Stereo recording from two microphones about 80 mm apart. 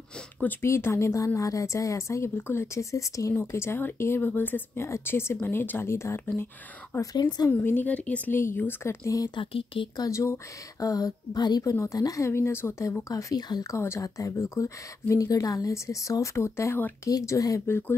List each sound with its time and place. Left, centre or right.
0.4 s speech: left
0.7 s a woman's voice: left
3.3 s a woman's voice: left
7.0 s speech: left
7.4 s speech: left
8.3 s a woman's voice: left
9.0 s speech: left
9.3 s speech: left
10.0 s speech: left
11.7 s a woman's voice: left
12.3 s a woman's voice: left
13.1 s speech: left
13.7 s a woman's voice: left
17.6 s speech: left